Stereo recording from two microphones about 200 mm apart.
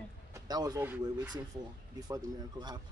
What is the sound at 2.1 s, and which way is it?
Speech, 20° right (ahead or behind).